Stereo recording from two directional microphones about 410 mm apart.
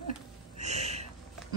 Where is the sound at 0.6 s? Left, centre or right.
Centre.